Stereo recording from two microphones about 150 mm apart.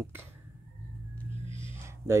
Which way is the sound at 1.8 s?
20° right (ahead or behind).